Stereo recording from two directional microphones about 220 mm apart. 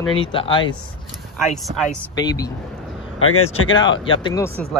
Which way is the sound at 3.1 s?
70° left (ahead or behind).